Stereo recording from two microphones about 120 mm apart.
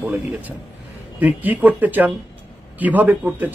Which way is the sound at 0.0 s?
15° right (ahead or behind).